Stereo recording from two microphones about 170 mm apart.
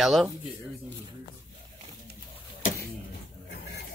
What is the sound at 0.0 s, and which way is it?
Speech, centre (ahead or behind).